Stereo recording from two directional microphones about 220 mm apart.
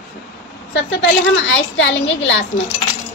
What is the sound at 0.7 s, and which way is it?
A woman's voice, 55° left (ahead or behind).